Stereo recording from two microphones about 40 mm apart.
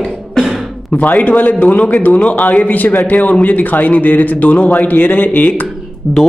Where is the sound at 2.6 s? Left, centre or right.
Left.